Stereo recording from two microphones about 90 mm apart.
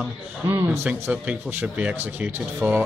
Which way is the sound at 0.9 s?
15° right (ahead or behind).